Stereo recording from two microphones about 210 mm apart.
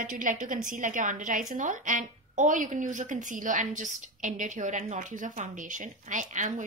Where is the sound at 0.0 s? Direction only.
40° right (ahead or behind).